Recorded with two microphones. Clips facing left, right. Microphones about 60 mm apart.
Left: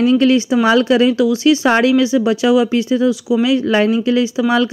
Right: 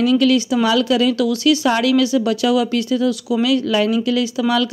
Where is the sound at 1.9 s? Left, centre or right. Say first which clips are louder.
Left 2 dB; left.